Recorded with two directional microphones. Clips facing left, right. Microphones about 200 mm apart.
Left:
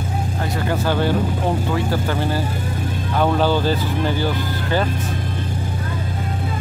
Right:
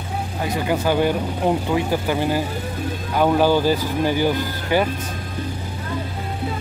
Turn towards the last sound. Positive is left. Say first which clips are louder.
# right 1 dB
turn(degrees=-10)  # may be behind; listen again after turning